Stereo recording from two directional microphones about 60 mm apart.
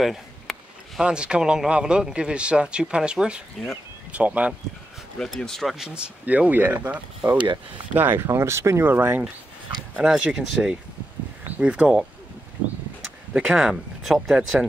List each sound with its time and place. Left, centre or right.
0.0 s a sound: centre
1.0 s speech: centre
5.2 s speech: centre
5.9 s speech: right
8.3 s speech: right
8.8 s speech: right
9.9 s speech: centre
11.4 s a sound: right
11.7 s speech: centre
13.4 s speech: centre